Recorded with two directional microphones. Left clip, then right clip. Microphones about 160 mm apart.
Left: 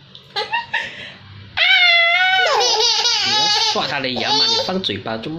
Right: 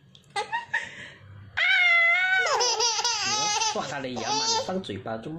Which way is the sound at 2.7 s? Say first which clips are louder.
Left 9 dB; 25° right (ahead or behind).